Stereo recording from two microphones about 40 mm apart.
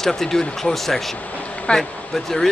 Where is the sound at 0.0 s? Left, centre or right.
Centre.